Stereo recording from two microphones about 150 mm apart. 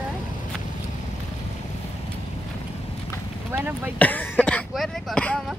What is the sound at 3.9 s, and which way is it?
Cough, 10° left (ahead or behind).